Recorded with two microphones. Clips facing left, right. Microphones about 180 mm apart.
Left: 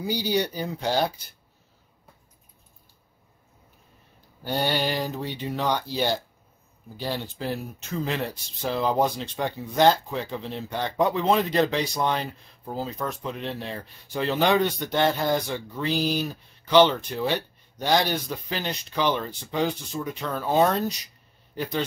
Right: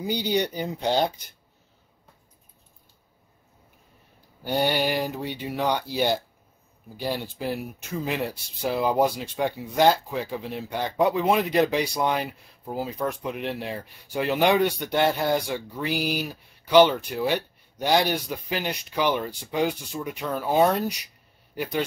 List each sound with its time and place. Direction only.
0.0 s speech: 20° right (ahead or behind)
4.4 s speech: 15° right (ahead or behind)